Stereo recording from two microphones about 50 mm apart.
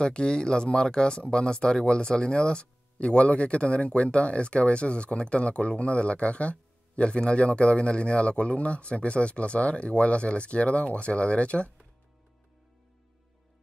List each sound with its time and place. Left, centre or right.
0.0 s speech: centre